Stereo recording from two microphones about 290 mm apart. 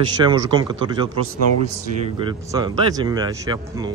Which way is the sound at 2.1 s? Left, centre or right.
Centre.